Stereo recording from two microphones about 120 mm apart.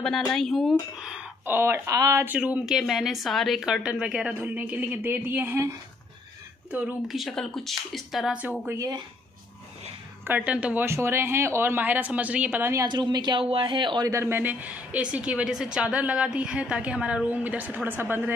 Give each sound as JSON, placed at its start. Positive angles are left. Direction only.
{"t": 0.3, "sound": "speech", "side_deg": 0}
{"t": 1.4, "sound": "speech", "side_deg": -20}
{"t": 2.2, "sound": "a woman's voice", "side_deg": -10}
{"t": 7.1, "sound": "speech", "side_deg": 0}
{"t": 8.7, "sound": "speech", "side_deg": -30}
{"t": 10.2, "sound": "a woman's voice", "side_deg": -15}
{"t": 12.8, "sound": "a woman's voice", "side_deg": -40}
{"t": 14.1, "sound": "a woman's voice", "side_deg": -20}